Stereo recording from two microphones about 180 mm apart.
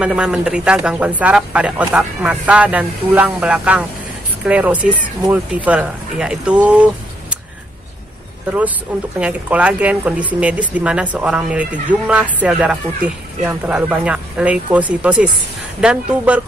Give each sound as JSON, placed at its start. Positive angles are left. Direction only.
{"t": 0.0, "sound": "speech", "side_deg": -5}
{"t": 8.9, "sound": "speech", "side_deg": -5}